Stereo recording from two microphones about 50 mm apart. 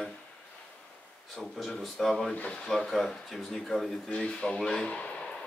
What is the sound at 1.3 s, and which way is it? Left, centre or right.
Speech, centre.